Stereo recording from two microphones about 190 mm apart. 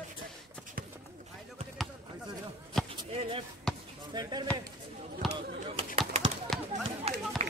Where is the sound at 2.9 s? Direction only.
30° right (ahead or behind).